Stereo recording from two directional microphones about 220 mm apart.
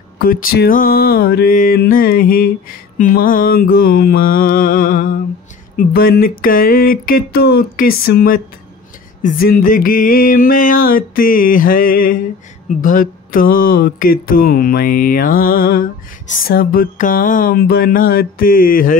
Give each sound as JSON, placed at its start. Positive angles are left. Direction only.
{"t": 0.2, "sound": "mantra", "side_deg": 40}